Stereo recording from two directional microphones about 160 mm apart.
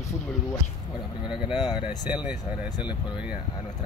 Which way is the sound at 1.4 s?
25° left (ahead or behind).